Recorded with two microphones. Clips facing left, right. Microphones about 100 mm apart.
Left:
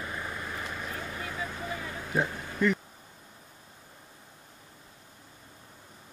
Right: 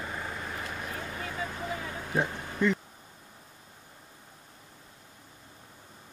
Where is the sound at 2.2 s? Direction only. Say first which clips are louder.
Even; 20° right (ahead or behind).